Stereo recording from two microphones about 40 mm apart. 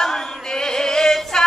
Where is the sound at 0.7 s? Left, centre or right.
Centre.